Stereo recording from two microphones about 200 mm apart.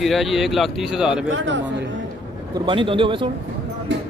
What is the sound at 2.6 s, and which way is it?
Speech, 25° right (ahead or behind).